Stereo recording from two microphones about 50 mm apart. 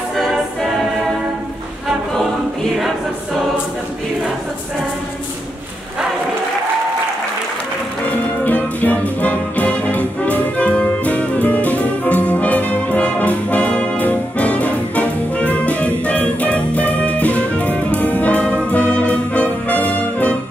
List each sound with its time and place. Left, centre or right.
0.3 s music: centre
8.5 s music: left